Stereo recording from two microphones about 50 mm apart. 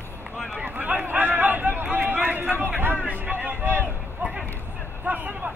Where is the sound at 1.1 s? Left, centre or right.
Right.